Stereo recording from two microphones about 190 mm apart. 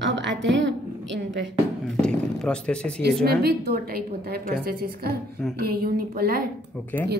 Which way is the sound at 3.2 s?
55° right (ahead or behind).